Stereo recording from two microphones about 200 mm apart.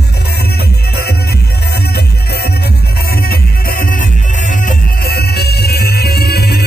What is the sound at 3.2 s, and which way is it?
Music, 45° left (ahead or behind).